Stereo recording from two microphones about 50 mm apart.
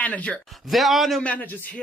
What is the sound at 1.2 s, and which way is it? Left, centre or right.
Speech, left.